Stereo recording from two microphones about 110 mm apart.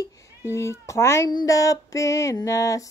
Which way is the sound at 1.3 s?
35° left (ahead or behind).